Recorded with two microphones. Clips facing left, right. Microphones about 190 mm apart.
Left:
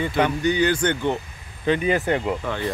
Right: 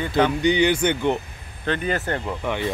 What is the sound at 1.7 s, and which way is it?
Speech, 5° left (ahead or behind).